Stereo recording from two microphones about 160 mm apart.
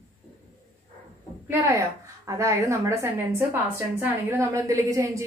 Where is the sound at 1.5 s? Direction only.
20° right (ahead or behind).